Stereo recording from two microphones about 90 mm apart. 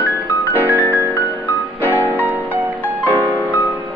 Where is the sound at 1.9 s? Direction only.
20° right (ahead or behind).